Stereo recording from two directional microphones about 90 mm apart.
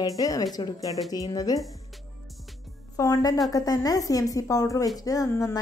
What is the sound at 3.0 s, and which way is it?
A woman's voice, 40° left (ahead or behind).